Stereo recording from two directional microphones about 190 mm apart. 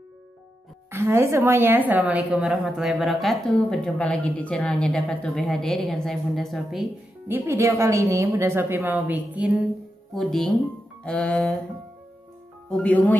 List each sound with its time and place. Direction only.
0.9 s a woman's voice: 15° right (ahead or behind)
7.2 s a woman's voice: 10° right (ahead or behind)
10.1 s a woman's voice: centre (ahead or behind)
12.6 s speech: 10° left (ahead or behind)